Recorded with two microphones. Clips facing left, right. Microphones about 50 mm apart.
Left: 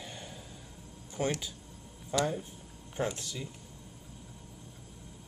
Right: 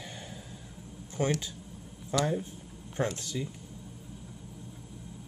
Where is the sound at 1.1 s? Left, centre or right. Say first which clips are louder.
Right 3 dB; centre.